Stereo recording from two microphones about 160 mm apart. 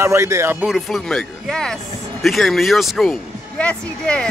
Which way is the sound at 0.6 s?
Centre (ahead or behind).